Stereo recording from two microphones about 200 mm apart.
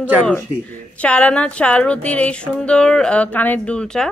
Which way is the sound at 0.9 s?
5° left (ahead or behind).